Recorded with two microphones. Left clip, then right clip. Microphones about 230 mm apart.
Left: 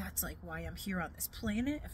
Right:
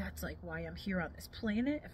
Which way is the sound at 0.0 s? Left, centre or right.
Left.